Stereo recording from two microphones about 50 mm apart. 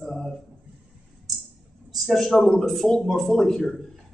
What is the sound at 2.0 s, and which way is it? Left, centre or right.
Speech, centre.